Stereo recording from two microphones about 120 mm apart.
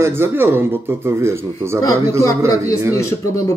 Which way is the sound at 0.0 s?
20° right (ahead or behind).